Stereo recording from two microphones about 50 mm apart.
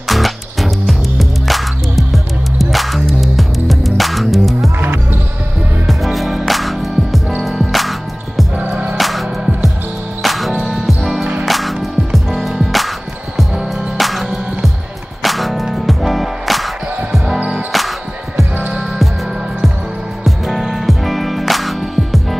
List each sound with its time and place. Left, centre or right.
0.1 s music: centre
4.7 s basketball bounce: right
5.9 s music: centre
8.5 s music: right
8.9 s music: centre
13.9 s music: centre
20.2 s music: centre